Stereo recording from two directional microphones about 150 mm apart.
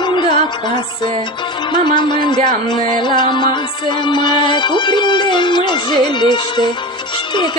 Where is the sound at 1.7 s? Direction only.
30° left (ahead or behind).